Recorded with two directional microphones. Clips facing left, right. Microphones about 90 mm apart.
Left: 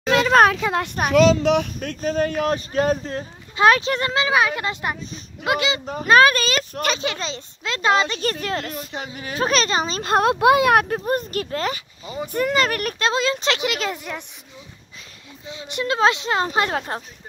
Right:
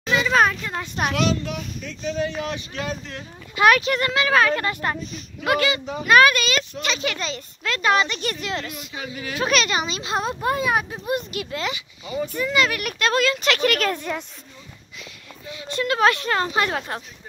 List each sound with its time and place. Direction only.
0.1 s speech: 60° left (ahead or behind); by 0.9 s 80° left
1.4 s speech: 70° left (ahead or behind); by 4.3 s 30° left (ahead or behind)
4.3 s a child's voice: 15° left (ahead or behind)
5.9 s a child's voice: 35° left (ahead or behind)
8.2 s speech: 40° left (ahead or behind); by 11.0 s 65° left (ahead or behind)
11.1 s speech: 45° left (ahead or behind)
12.3 s speech: 55° left (ahead or behind)
13.0 s a child's voice: 30° left (ahead or behind)
13.6 s speech: 15° left (ahead or behind)
15.4 s a child's voice: 25° left (ahead or behind)